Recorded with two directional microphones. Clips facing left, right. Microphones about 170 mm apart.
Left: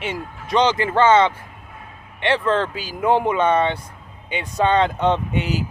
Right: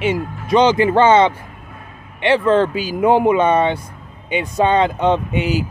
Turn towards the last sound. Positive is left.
turn(degrees=-5)  # may be behind; listen again after turning